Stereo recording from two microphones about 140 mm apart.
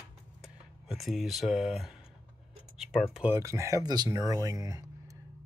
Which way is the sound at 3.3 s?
20° right (ahead or behind).